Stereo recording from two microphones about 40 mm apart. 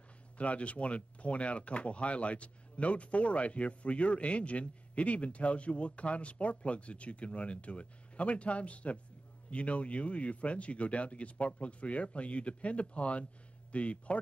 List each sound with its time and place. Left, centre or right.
0.4 s speech: left